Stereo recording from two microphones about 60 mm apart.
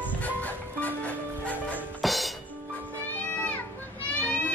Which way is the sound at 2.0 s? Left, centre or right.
Centre.